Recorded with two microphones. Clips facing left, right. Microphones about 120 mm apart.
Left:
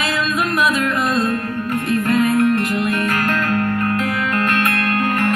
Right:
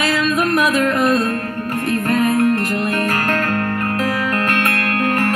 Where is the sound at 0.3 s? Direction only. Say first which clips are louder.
Right 1 dB; 40° right (ahead or behind).